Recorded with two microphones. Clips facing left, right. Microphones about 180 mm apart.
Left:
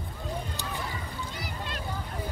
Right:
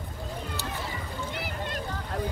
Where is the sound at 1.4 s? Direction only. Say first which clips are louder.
Right 4 dB; 50° right (ahead or behind).